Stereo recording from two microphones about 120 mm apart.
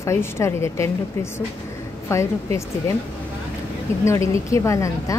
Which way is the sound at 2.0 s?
25° left (ahead or behind).